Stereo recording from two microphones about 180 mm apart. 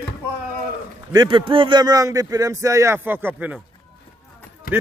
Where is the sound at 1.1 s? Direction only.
25° right (ahead or behind).